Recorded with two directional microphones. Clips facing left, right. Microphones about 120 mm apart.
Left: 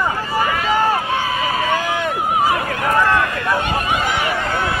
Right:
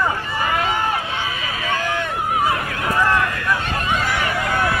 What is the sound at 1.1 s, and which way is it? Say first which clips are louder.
Run: left 7 dB; 45° left (ahead or behind).